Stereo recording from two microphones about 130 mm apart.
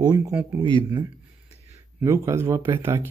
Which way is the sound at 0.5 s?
40° right (ahead or behind).